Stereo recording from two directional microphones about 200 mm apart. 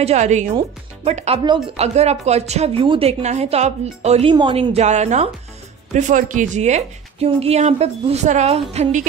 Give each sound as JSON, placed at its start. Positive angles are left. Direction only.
{"t": 0.0, "sound": "speech", "side_deg": -35}